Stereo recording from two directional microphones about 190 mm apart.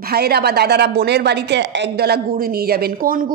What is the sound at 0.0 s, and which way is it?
Speech, 55° right (ahead or behind).